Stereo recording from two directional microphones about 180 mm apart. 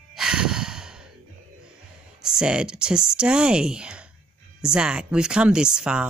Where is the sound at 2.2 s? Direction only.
5° right (ahead or behind).